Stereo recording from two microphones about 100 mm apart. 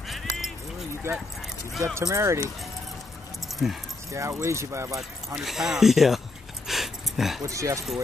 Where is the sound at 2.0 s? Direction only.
30° right (ahead or behind).